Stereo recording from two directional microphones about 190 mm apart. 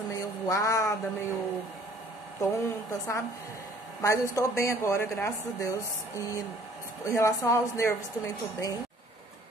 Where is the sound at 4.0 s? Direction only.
15° left (ahead or behind).